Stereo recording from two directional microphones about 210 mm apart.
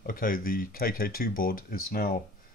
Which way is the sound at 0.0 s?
40° left (ahead or behind).